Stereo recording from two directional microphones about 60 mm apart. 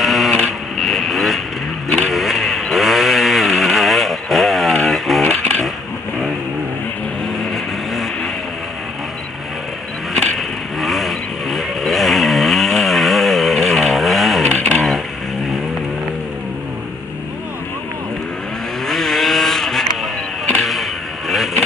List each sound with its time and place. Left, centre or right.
0.0 s printer: centre
0.4 s vehicle: centre
7.5 s vehicle: centre
10.1 s vehicle: centre
14.5 s a sound: centre
18.9 s vehicle: centre